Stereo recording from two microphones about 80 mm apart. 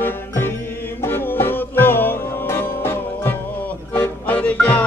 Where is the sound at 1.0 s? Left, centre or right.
Left.